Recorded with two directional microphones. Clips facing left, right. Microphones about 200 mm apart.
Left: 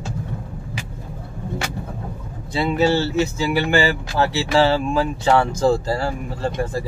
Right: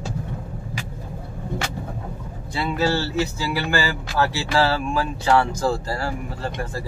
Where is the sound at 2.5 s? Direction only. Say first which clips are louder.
Left 4 dB; 20° left (ahead or behind).